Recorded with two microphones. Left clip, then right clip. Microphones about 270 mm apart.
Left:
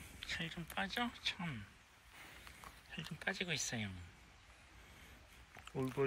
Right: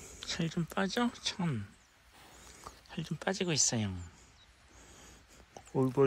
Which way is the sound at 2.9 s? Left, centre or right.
Centre.